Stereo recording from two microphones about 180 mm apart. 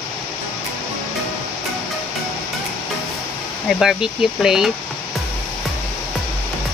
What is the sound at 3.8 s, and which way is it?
Speech, centre (ahead or behind).